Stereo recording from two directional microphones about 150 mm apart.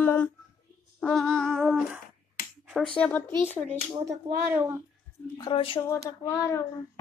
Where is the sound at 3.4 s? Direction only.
50° right (ahead or behind).